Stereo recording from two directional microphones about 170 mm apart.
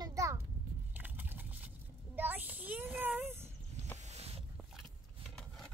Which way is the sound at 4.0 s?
40° right (ahead or behind).